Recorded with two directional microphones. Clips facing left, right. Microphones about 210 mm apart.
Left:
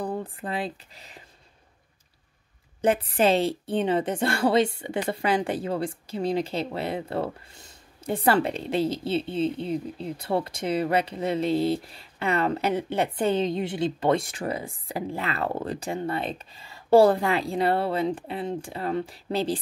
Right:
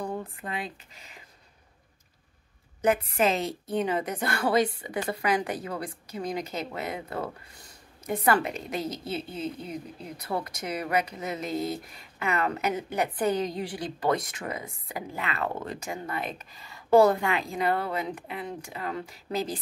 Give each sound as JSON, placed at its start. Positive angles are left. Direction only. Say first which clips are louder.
{"t": 0.0, "sound": "speech", "louder": "left 3 dB", "side_deg": 35}
{"t": 2.8, "sound": "a woman's voice", "louder": "left 2 dB", "side_deg": 30}